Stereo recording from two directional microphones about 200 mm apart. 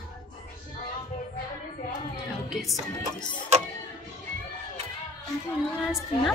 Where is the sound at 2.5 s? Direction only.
Centre (ahead or behind).